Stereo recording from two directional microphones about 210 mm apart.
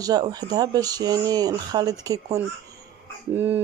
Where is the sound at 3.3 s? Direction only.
10° right (ahead or behind).